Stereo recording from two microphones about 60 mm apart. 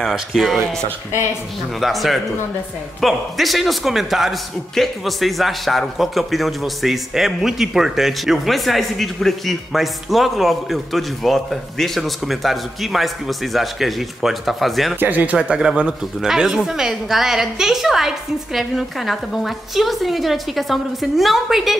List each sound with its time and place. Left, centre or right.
0.1 s a man's voice: centre
1.8 s a man's voice: centre
15.0 s speech: right
15.3 s a man's voice: centre